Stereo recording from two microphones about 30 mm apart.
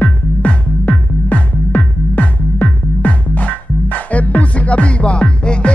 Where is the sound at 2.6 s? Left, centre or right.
Left.